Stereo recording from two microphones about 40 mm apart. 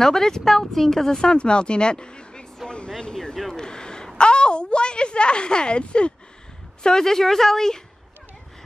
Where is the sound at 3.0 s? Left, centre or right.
Centre.